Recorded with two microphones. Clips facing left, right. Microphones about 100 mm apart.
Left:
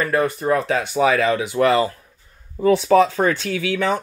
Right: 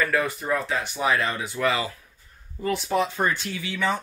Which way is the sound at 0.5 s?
80° left.